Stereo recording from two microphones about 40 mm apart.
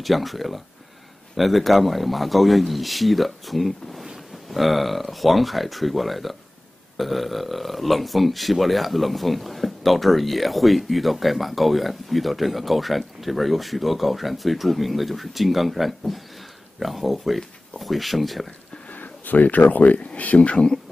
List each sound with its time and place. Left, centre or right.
0.0 s speech: centre
18.9 s speech: left
20.0 s speech: left